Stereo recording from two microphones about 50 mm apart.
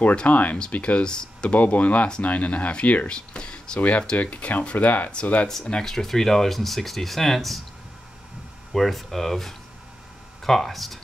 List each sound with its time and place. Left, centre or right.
0.3 s speech: left
1.5 s speech: left
3.1 s speech: centre
5.7 s speech: centre
8.7 s speech: centre